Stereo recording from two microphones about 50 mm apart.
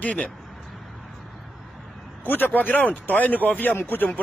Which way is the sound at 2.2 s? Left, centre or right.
Left.